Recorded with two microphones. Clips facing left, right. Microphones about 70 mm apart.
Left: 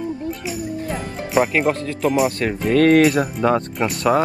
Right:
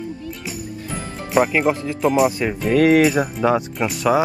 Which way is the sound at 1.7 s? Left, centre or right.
Centre.